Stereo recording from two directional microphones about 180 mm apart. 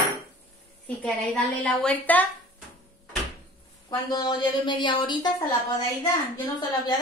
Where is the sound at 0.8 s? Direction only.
5° left (ahead or behind).